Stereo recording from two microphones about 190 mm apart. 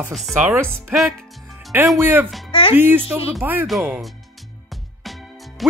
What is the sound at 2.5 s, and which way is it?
Speech, 30° left (ahead or behind).